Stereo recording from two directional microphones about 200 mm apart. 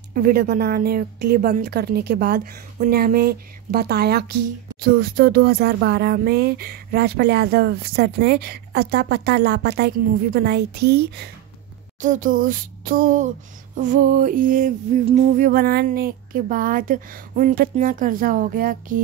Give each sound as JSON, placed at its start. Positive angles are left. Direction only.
{"t": 0.1, "sound": "speech", "side_deg": -45}
{"t": 12.0, "sound": "speech", "side_deg": -40}